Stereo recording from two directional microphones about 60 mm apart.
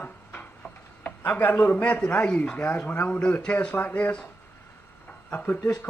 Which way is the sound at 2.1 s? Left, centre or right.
Left.